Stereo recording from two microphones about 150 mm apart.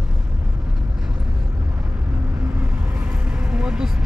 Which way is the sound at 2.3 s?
10° right (ahead or behind).